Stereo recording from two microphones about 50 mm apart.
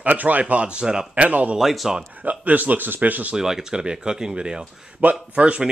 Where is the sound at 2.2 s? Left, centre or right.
Right.